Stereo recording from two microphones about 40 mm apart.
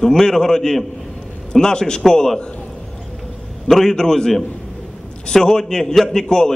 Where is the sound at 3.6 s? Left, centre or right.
Centre.